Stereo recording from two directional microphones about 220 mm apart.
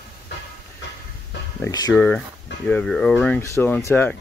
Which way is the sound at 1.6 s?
15° left (ahead or behind).